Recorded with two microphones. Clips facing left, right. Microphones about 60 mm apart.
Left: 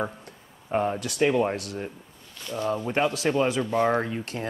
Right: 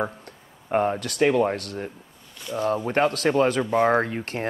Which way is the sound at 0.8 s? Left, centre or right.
Right.